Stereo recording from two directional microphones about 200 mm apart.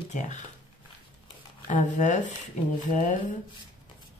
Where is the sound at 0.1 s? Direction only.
35° left (ahead or behind).